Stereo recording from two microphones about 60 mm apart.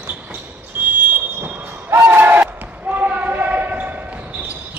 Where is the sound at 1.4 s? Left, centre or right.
Right.